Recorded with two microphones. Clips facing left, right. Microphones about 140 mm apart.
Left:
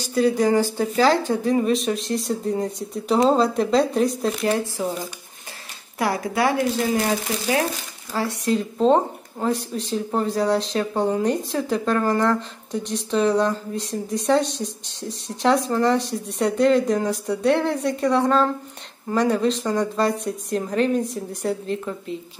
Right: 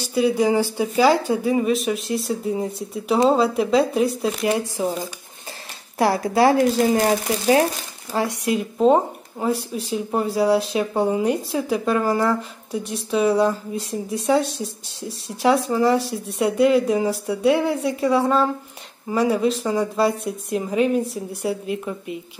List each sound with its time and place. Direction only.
0.1 s speech: 10° right (ahead or behind)
5.9 s speech: 30° right (ahead or behind)
8.1 s speech: 15° right (ahead or behind)